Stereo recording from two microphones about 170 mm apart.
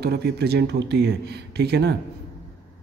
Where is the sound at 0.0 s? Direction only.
70° right (ahead or behind).